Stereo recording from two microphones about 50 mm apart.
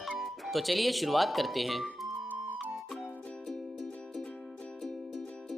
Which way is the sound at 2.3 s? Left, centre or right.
Right.